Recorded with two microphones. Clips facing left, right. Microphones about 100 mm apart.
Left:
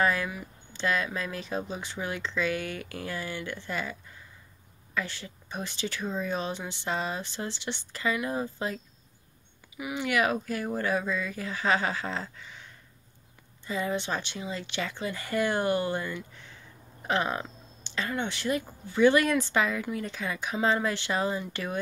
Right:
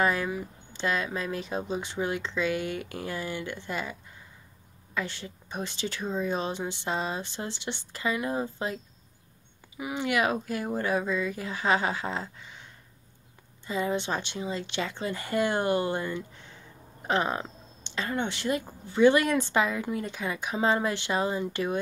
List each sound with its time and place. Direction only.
0.0 s speech: 25° right (ahead or behind)
4.9 s speech: 25° right (ahead or behind)
13.7 s speech: 25° right (ahead or behind)